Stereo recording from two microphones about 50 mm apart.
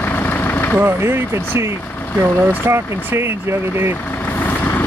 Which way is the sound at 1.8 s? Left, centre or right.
Left.